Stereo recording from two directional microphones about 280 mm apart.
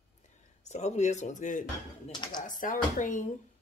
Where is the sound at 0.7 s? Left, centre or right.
Left.